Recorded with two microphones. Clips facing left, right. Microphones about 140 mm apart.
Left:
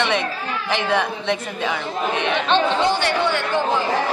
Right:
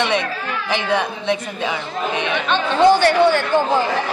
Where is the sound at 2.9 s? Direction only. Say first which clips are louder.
Right 6 dB; 40° right (ahead or behind).